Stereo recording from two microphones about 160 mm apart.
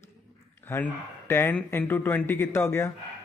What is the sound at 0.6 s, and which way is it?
Speech, 15° left (ahead or behind).